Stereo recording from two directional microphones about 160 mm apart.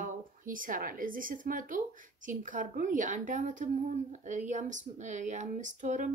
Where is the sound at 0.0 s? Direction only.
55° right (ahead or behind).